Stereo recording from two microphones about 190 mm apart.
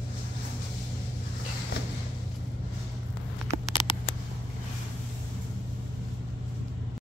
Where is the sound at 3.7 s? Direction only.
25° left (ahead or behind).